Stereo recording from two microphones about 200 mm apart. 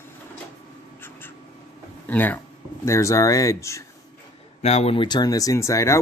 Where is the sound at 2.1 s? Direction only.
10° left (ahead or behind).